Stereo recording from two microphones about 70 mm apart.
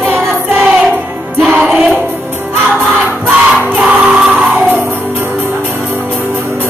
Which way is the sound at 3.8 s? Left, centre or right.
Centre.